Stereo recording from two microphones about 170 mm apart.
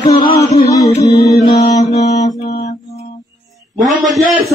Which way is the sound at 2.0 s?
40° left (ahead or behind).